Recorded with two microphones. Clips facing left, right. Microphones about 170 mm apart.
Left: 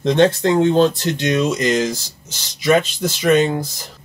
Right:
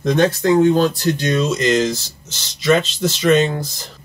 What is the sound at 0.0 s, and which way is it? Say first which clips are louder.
Speech: left 1 dB; 25° left (ahead or behind).